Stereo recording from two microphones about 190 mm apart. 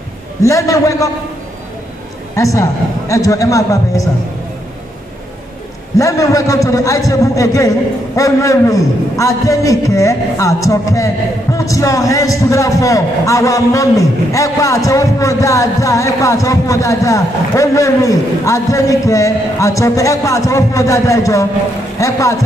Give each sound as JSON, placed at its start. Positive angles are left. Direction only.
{"t": 0.4, "sound": "a man's voice", "side_deg": 15}
{"t": 2.3, "sound": "a man's voice", "side_deg": 15}
{"t": 5.9, "sound": "a man's voice", "side_deg": 15}